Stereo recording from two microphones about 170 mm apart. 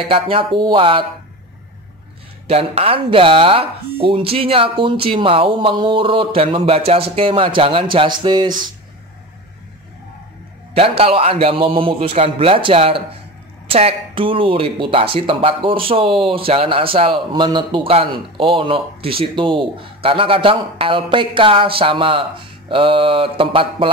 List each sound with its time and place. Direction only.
0.1 s speech: 30° right (ahead or behind)
2.4 s speech: 35° right (ahead or behind)
10.7 s speech: 35° right (ahead or behind)